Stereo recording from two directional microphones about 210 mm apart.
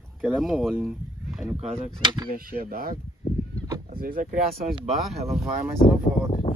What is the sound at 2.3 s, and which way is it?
Speech, 45° right (ahead or behind).